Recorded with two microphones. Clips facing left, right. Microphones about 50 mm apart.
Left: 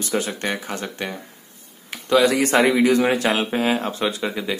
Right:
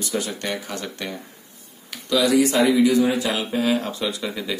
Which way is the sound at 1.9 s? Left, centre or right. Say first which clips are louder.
Left 1 dB; left.